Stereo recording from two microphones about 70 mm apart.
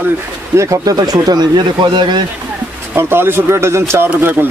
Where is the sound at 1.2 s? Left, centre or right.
Right.